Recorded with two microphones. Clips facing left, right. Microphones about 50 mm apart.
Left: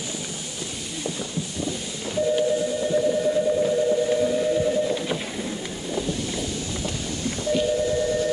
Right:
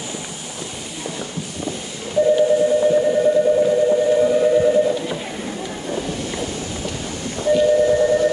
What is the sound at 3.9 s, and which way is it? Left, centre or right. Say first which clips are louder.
Steam whistle: right 6 dB; right.